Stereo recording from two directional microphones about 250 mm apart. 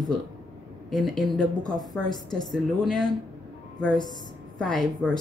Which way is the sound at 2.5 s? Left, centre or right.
Centre.